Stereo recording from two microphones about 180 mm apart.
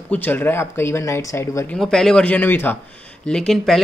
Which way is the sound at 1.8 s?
5° left (ahead or behind).